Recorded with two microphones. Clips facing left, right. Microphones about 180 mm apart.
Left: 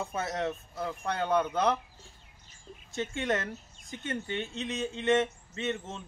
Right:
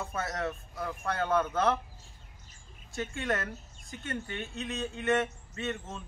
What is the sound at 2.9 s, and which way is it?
Speech, 20° left (ahead or behind).